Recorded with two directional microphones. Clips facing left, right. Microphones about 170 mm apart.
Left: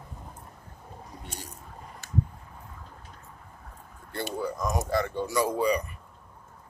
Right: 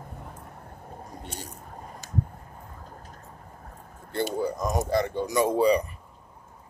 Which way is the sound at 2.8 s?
40° right (ahead or behind).